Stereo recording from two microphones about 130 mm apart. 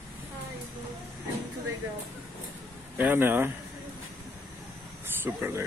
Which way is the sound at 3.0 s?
15° right (ahead or behind).